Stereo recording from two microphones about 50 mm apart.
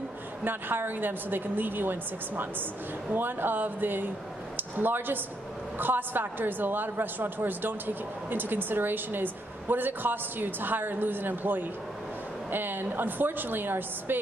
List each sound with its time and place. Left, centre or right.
0.4 s a woman's voice: right